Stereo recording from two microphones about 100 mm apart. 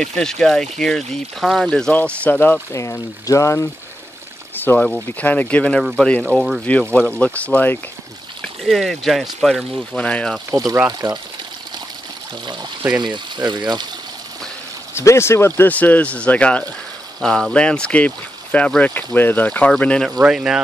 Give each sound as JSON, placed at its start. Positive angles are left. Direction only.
{"t": 0.0, "sound": "speech", "side_deg": 5}
{"t": 2.7, "sound": "speech", "side_deg": 30}
{"t": 4.7, "sound": "speech", "side_deg": 10}
{"t": 5.8, "sound": "speech", "side_deg": 0}
{"t": 6.9, "sound": "speech", "side_deg": 15}
{"t": 8.4, "sound": "speech", "side_deg": 0}
{"t": 9.9, "sound": "speech", "side_deg": 15}
{"t": 10.5, "sound": "speech", "side_deg": -40}
{"t": 12.4, "sound": "speech", "side_deg": -45}
{"t": 15.0, "sound": "speech", "side_deg": 25}
{"t": 20.2, "sound": "speech", "side_deg": -5}